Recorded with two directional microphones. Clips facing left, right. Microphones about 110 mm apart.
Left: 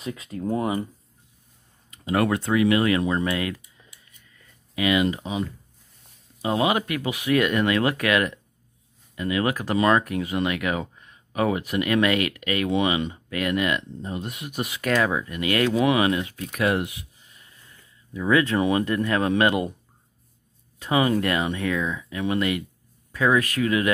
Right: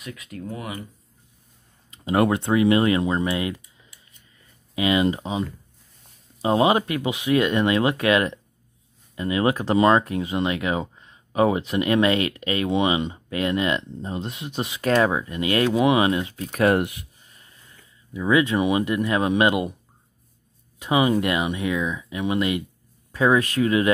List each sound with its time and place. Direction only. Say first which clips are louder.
0.0 s speech: left 5 dB; 30° left (ahead or behind)
1.9 s speech: right 2 dB; 25° right (ahead or behind)
6.4 s speech: right 4 dB; 30° right (ahead or behind)
16.6 s speech: right 4 dB; 55° right (ahead or behind)
18.1 s speech: right 1 dB; 15° right (ahead or behind)
20.8 s speech: right 1 dB; 15° right (ahead or behind)